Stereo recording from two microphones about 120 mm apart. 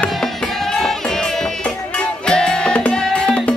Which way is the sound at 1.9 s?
5° left (ahead or behind).